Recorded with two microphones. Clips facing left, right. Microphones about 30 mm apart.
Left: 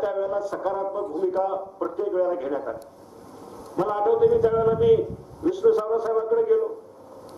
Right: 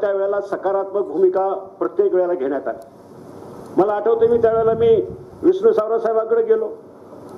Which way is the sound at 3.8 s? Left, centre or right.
Centre.